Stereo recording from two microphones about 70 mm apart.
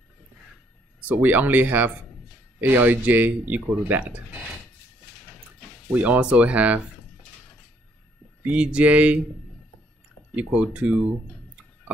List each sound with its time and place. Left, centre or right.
1.0 s speech: right
5.9 s speech: centre
8.5 s speech: centre
10.3 s speech: centre